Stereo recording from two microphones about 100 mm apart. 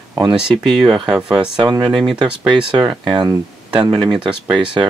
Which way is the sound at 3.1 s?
45° right (ahead or behind).